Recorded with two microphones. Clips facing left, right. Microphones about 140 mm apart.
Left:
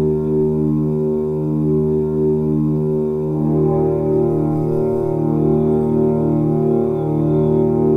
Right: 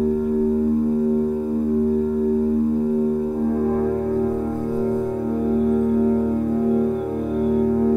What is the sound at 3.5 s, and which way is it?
Music, 35° left (ahead or behind).